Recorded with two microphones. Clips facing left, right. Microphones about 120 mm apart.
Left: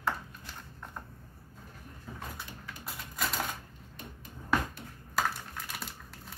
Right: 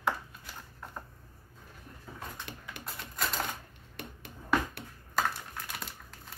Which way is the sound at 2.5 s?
75° right (ahead or behind).